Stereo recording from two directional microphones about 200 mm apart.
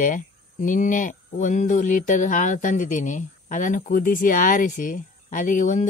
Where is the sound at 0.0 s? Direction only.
40° left (ahead or behind).